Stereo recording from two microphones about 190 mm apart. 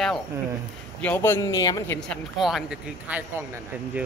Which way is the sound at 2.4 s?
Centre (ahead or behind).